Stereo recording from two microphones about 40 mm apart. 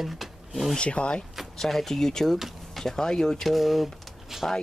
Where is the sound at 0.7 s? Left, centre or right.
Left.